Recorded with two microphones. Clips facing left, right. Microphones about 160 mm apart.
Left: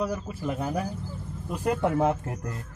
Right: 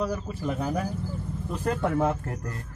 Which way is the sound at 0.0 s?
5° left (ahead or behind).